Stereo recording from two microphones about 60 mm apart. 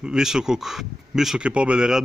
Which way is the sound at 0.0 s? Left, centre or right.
Centre.